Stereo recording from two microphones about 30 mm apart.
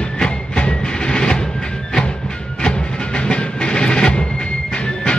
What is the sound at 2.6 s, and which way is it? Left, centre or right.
Music, left.